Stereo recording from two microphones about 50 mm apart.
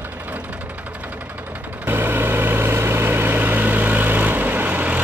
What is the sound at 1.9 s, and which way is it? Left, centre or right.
Vehicle, right.